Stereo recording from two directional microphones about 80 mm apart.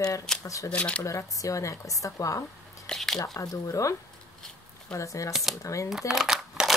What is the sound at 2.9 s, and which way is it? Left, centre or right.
Speech, centre.